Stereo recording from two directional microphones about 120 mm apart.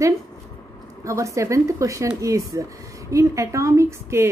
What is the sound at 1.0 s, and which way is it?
Speech, 25° right (ahead or behind).